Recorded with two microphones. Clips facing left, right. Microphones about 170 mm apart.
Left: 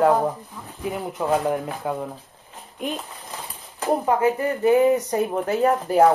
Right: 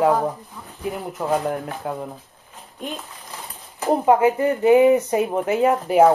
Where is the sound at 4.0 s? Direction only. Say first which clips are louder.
Right 6 dB; 15° right (ahead or behind).